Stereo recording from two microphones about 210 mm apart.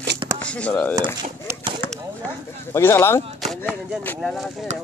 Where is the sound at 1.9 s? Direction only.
10° left (ahead or behind).